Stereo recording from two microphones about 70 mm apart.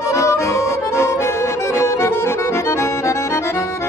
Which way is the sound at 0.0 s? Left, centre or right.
Left.